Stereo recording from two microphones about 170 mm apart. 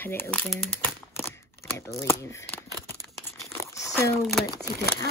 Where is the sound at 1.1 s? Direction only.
15° left (ahead or behind).